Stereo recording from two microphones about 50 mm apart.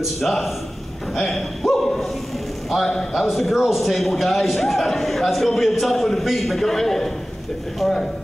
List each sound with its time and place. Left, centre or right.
0.0 s a man's voice: centre
2.9 s speech: centre
3.2 s a man's voice: centre